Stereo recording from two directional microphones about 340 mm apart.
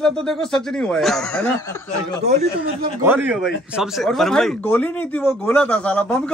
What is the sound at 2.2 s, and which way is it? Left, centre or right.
Speech, right.